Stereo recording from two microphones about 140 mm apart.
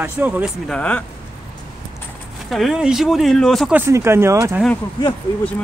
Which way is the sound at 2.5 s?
Centre (ahead or behind).